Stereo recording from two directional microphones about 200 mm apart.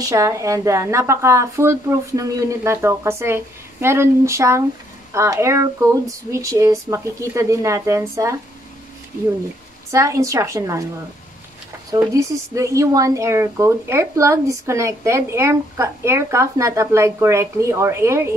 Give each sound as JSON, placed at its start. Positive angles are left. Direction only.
{"t": 0.0, "sound": "speech", "side_deg": -15}
{"t": 9.8, "sound": "speech", "side_deg": -15}
{"t": 11.9, "sound": "speech", "side_deg": -15}